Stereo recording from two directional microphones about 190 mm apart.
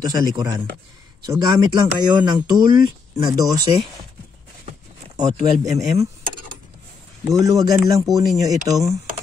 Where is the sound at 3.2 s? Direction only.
20° right (ahead or behind).